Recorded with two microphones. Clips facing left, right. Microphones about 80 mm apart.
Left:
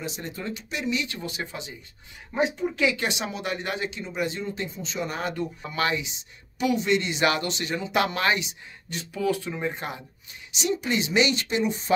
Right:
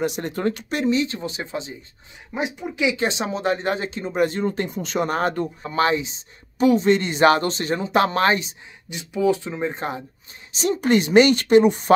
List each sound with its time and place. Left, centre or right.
0.0 s speech: right
2.3 s speech: centre
3.0 s speech: right
9.1 s speech: right
10.5 s a woman's voice: right